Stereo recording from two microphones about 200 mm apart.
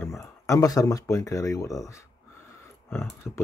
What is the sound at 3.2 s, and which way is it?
Speech, 10° left (ahead or behind).